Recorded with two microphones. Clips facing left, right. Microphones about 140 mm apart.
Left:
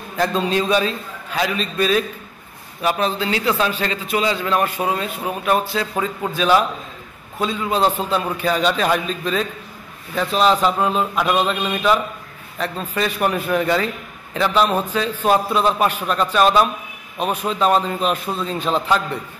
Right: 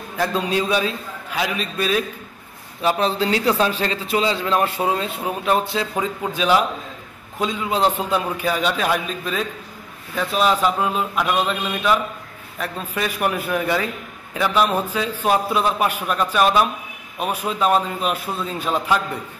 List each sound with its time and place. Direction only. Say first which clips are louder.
0.2 s a man's voice: left 2 dB; 10° right (ahead or behind)
3.0 s a man's voice: right 1 dB; 35° right (ahead or behind); by 11.5 s centre (ahead or behind)
12.5 s a man's voice: left 3 dB; 10° right (ahead or behind)